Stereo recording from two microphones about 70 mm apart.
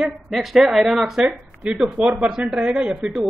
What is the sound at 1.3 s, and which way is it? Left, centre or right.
Speech, centre.